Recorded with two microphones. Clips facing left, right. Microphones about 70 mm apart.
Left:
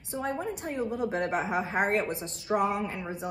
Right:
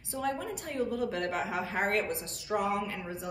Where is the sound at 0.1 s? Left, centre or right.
Left.